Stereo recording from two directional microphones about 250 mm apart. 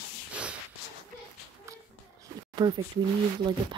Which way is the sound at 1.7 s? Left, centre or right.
Centre.